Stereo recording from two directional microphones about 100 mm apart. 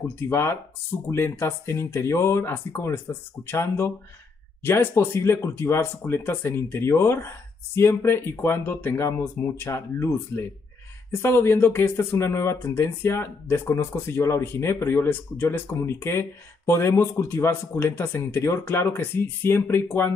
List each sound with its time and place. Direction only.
0.0 s speech: 25° left (ahead or behind)